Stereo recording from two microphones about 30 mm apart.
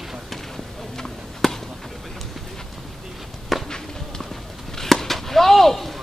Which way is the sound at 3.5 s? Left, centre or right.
Centre.